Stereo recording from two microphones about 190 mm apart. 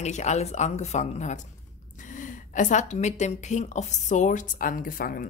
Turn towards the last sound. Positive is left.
turn(degrees=50)  # may be behind; listen again after turning